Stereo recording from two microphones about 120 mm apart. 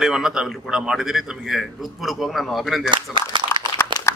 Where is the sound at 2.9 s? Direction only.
40° right (ahead or behind).